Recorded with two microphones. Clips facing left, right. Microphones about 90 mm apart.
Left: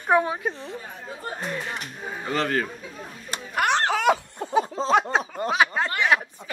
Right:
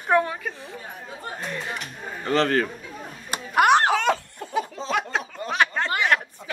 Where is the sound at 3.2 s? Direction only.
10° right (ahead or behind).